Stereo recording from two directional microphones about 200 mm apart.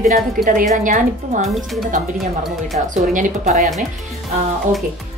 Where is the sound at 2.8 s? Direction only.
40° right (ahead or behind).